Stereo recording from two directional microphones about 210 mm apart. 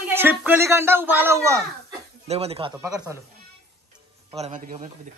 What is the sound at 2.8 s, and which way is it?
Speech, 10° right (ahead or behind).